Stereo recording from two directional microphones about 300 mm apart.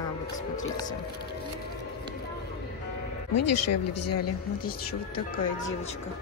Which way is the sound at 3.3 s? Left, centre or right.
Left.